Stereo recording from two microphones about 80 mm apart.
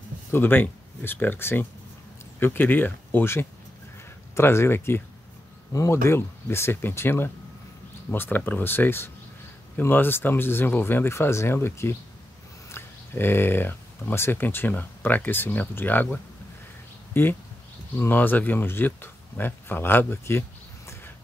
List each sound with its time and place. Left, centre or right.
0.3 s speech: left